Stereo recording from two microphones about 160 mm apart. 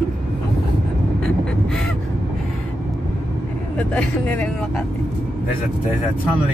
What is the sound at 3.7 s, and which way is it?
Speech, 10° left (ahead or behind).